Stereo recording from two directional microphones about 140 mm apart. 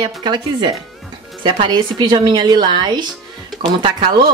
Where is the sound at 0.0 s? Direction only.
30° right (ahead or behind).